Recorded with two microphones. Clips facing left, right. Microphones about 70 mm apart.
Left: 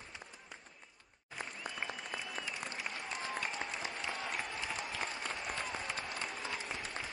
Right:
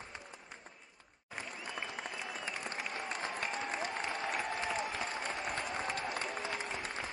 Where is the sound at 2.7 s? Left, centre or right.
Right.